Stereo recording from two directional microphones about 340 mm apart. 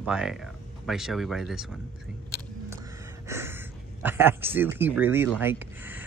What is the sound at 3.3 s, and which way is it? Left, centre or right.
Speech, centre.